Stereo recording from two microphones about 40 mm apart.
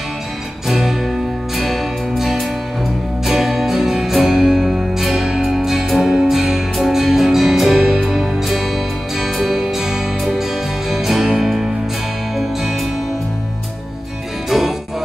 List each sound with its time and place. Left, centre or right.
0.7 s music: centre